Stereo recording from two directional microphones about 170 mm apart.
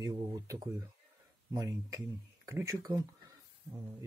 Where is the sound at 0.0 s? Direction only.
20° right (ahead or behind).